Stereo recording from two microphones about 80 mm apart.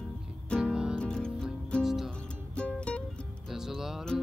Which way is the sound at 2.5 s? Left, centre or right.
Centre.